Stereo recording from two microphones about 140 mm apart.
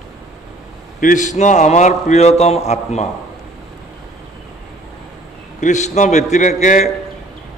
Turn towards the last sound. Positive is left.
turn(degrees=60)  # may be behind; listen again after turning